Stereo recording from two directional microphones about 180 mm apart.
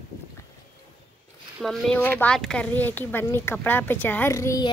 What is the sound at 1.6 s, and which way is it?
Speech, centre (ahead or behind).